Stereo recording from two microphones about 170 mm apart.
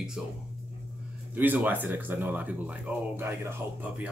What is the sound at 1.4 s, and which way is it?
Speech, 10° right (ahead or behind).